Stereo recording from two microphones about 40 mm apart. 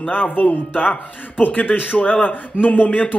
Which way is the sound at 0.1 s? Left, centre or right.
Left.